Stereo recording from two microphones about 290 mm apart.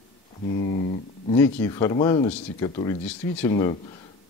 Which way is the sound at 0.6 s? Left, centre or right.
Left.